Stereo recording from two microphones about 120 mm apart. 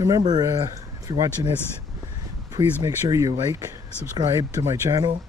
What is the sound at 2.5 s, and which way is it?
Speech, 30° right (ahead or behind).